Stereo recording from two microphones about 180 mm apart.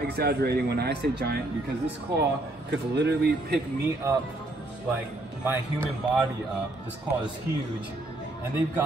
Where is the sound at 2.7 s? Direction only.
70° right (ahead or behind).